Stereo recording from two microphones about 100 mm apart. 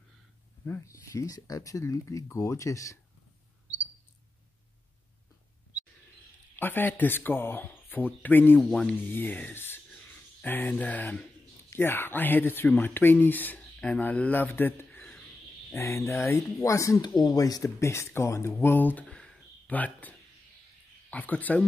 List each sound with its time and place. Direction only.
0.7 s speech: 25° left (ahead or behind)
6.5 s speech: 20° left (ahead or behind)
15.7 s speech: 30° left (ahead or behind)
17.6 s speech: 30° left (ahead or behind)